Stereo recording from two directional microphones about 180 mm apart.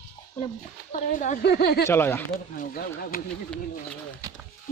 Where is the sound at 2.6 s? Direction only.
55° left (ahead or behind).